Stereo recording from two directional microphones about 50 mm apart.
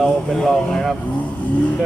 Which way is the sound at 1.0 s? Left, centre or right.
Left.